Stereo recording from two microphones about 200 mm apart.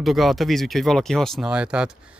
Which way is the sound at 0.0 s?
Centre (ahead or behind).